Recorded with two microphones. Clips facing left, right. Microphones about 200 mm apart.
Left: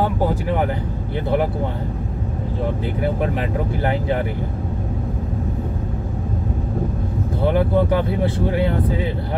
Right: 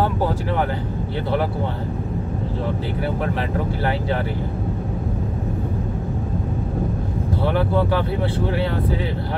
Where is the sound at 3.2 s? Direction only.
15° left (ahead or behind).